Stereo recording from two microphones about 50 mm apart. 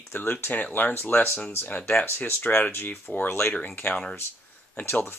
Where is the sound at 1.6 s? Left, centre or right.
Left.